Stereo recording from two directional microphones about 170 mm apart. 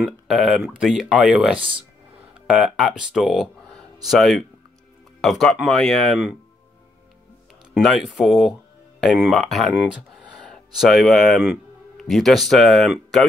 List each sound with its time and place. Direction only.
0.0 s speech: centre (ahead or behind)
7.7 s speech: centre (ahead or behind)